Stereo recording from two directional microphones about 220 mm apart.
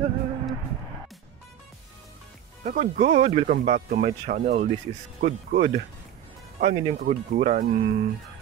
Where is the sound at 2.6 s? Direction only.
35° right (ahead or behind).